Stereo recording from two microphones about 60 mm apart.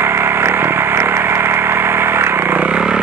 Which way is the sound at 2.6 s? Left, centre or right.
Centre.